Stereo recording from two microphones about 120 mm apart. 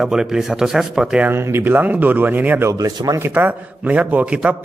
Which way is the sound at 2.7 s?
30° right (ahead or behind).